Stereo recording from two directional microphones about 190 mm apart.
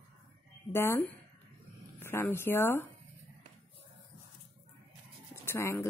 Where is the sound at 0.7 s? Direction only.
15° left (ahead or behind).